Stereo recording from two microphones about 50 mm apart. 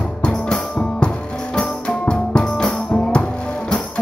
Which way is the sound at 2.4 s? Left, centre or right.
Centre.